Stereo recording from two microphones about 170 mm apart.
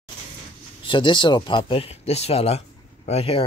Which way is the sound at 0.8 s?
30° left (ahead or behind).